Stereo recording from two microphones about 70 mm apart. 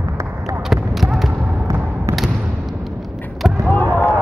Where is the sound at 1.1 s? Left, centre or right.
Centre.